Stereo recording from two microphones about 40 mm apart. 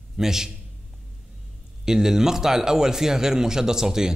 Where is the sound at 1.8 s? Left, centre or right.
Centre.